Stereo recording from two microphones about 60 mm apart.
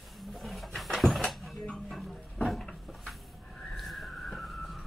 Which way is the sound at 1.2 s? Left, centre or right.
Centre.